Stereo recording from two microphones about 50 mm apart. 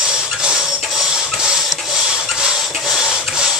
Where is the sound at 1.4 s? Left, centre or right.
Centre.